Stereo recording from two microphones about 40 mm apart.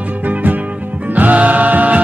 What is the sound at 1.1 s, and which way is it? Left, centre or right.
Music, right.